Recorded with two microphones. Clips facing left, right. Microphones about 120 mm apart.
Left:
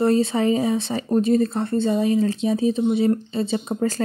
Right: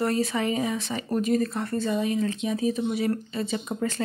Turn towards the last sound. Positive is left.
turn(degrees=35)  # may be behind; listen again after turning